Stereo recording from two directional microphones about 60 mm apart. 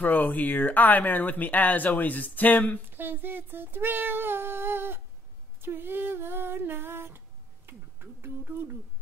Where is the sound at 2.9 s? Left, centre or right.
Right.